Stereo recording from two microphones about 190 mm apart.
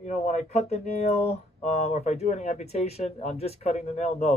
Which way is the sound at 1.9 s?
35° left (ahead or behind).